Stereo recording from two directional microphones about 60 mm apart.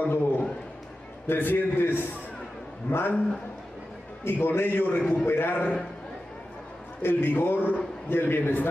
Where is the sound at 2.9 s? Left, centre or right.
Left.